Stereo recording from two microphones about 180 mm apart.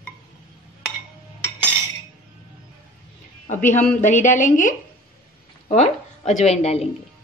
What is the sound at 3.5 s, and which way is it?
A man's voice, 40° left (ahead or behind).